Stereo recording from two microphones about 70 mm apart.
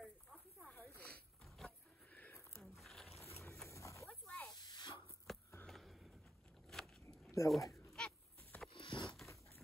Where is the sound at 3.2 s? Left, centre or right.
Left.